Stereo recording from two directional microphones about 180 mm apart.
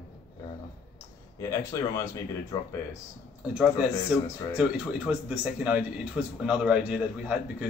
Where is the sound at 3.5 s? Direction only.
5° right (ahead or behind).